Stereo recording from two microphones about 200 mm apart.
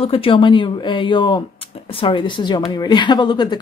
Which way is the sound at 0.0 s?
30° left (ahead or behind).